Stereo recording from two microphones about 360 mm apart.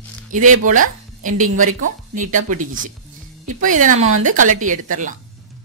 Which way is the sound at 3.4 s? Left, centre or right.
Right.